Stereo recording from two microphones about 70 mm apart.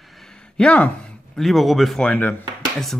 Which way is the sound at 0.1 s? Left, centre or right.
Centre.